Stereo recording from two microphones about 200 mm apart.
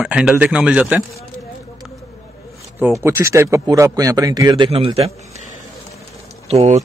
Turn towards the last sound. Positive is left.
turn(degrees=-35)  # may be behind; listen again after turning